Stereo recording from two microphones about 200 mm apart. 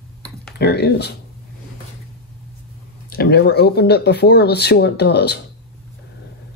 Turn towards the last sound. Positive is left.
turn(degrees=55)  # may be behind; listen again after turning